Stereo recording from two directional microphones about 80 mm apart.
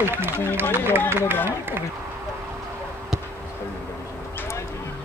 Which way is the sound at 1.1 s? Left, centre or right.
Right.